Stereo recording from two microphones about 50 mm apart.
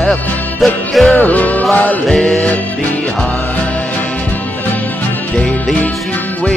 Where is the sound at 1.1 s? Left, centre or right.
Left.